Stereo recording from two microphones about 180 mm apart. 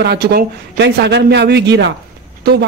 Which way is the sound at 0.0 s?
65° right (ahead or behind).